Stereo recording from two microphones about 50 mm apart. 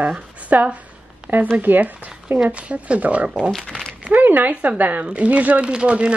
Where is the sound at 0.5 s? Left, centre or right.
Right.